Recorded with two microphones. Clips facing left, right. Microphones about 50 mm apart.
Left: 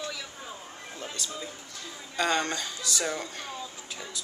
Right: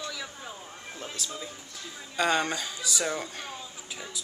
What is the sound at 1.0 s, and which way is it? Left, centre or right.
Speech, centre.